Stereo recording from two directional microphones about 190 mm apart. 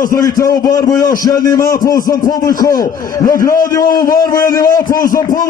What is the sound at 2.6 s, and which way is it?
Speech, 20° left (ahead or behind).